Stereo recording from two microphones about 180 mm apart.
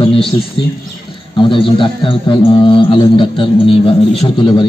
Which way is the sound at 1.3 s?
30° left (ahead or behind).